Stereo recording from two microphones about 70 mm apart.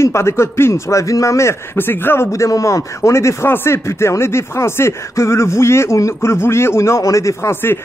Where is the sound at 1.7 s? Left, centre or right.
Left.